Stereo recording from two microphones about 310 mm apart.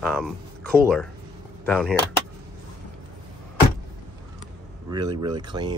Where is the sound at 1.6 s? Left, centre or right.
Centre.